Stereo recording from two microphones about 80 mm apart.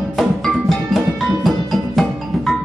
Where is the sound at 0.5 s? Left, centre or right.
Centre.